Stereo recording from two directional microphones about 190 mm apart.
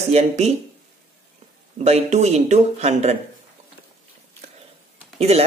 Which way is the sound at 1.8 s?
35° right (ahead or behind).